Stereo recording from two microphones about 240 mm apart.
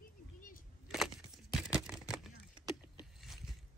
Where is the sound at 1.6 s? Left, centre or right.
Centre.